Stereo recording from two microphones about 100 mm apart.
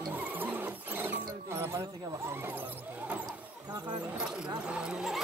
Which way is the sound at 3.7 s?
45° right (ahead or behind).